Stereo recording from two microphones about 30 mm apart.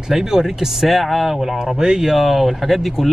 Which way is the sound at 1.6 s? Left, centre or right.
Right.